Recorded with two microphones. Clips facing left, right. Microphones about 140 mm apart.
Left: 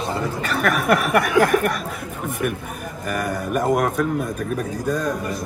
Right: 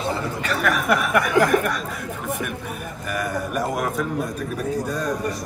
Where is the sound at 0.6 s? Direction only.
50° left (ahead or behind).